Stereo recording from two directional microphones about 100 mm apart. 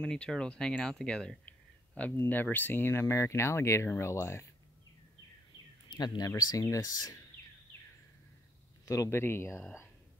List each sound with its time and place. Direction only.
0.0 s speech: 10° left (ahead or behind); by 4.5 s 30° left (ahead or behind)
5.9 s speech: 45° left (ahead or behind)
8.8 s speech: 35° left (ahead or behind)